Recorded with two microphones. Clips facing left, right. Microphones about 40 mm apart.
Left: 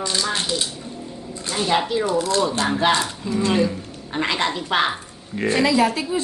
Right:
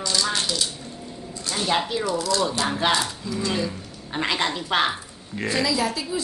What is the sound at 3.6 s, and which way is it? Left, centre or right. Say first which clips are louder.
A woman's voice: left 5 dB; centre.